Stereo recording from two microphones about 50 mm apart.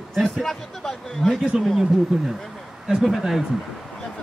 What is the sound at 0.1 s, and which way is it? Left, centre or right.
Speech, centre.